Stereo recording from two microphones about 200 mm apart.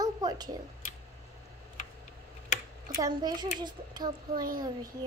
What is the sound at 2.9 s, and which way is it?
A woman's voice, 20° right (ahead or behind).